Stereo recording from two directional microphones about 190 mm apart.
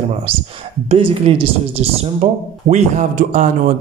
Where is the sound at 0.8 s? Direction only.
30° right (ahead or behind).